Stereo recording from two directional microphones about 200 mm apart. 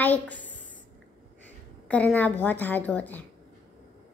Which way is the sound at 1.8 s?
5° left (ahead or behind).